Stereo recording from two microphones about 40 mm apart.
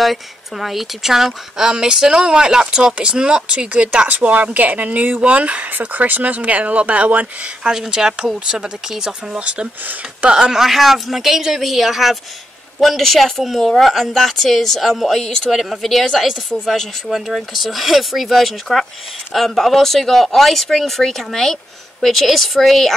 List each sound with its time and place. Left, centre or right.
0.0 s a woman's voice: centre; by 4.1 s right
4.1 s speech: right
7.7 s speech: centre
9.4 s speech: right
10.5 s a woman's voice: centre
17.1 s a woman's voice: centre